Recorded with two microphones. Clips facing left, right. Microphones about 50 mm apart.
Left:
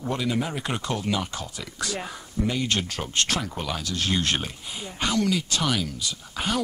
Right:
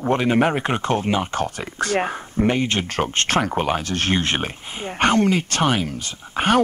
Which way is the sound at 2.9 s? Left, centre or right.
Right.